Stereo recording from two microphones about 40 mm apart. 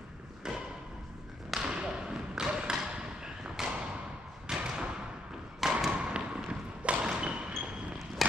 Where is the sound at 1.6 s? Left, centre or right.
Right.